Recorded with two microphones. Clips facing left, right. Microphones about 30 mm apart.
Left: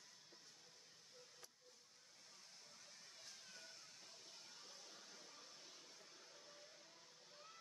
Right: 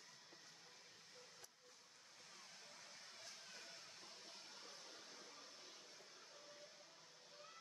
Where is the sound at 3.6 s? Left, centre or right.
Right.